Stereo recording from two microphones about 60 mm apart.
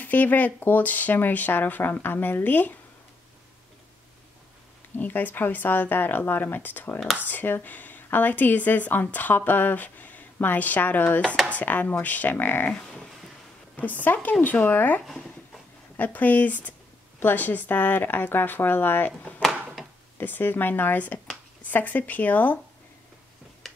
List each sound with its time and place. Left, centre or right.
0.0 s speech: left
4.9 s speech: left
13.7 s speech: left
20.2 s speech: left